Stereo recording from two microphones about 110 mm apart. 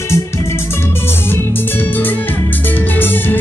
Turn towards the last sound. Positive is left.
turn(degrees=20)  # may be behind; listen again after turning